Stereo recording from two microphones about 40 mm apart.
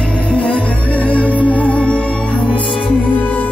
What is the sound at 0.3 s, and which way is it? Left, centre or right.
Music, left.